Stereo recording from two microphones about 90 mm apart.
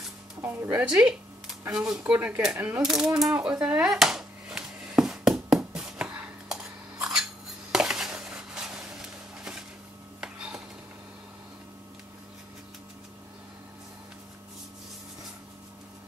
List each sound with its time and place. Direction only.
0.4 s speech: 25° right (ahead or behind)
2.8 s speech: 5° right (ahead or behind)
3.3 s a sound: 15° right (ahead or behind)